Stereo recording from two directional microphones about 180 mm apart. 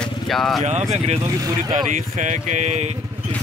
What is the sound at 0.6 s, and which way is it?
Speech, 40° right (ahead or behind).